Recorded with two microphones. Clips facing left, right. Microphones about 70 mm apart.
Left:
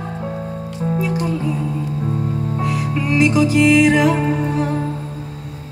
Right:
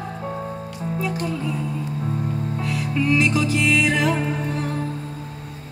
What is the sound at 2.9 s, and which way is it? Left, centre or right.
Music, centre.